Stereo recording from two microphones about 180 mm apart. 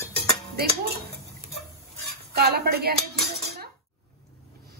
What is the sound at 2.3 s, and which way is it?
Speech, 60° right (ahead or behind).